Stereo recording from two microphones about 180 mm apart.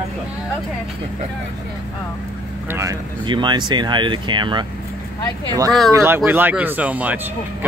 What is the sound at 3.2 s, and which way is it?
Speech, 25° right (ahead or behind).